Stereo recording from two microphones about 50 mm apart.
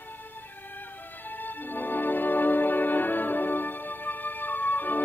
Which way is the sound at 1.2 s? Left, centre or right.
Left.